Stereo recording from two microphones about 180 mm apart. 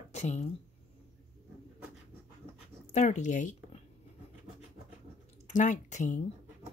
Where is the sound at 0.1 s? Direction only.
40° left (ahead or behind).